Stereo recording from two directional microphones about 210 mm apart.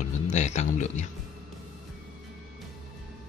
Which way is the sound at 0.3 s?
35° left (ahead or behind).